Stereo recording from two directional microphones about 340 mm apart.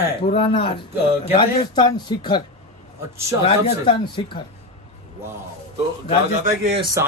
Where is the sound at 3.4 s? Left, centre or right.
Centre.